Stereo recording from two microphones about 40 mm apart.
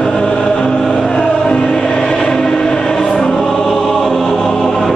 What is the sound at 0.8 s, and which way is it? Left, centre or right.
Music, centre.